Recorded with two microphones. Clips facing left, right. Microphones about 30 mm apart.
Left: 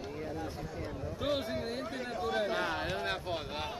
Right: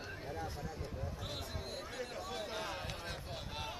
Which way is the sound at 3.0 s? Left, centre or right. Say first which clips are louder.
Left 10 dB; left.